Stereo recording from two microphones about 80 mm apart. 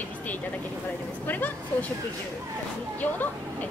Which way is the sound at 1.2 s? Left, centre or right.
Left.